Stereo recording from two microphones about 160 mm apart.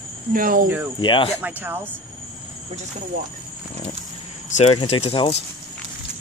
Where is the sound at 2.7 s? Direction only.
45° right (ahead or behind).